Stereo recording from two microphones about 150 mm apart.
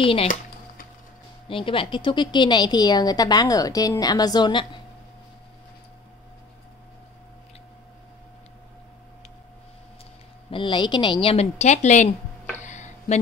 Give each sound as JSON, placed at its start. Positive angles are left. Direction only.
{"t": 0.0, "sound": "speech", "side_deg": 40}
{"t": 1.5, "sound": "a woman's voice", "side_deg": 35}
{"t": 10.5, "sound": "speech", "side_deg": 35}
{"t": 12.6, "sound": "a sound", "side_deg": 50}